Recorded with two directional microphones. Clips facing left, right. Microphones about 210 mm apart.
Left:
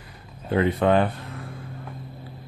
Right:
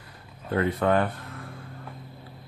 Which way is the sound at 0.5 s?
20° left (ahead or behind).